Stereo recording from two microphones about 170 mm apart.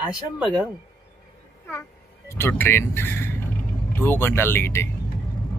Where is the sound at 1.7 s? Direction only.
15° left (ahead or behind).